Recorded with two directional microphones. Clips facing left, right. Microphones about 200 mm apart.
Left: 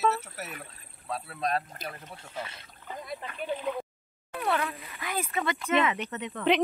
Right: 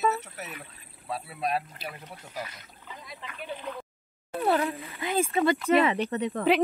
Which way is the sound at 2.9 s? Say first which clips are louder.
Left 7 dB; 50° left (ahead or behind).